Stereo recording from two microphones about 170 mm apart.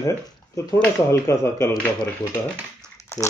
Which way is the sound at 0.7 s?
10° left (ahead or behind).